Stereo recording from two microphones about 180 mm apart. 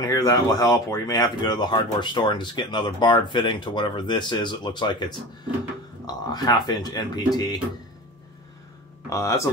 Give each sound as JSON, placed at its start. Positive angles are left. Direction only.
{"t": 0.0, "sound": "speech", "side_deg": 20}
{"t": 9.1, "sound": "speech", "side_deg": 15}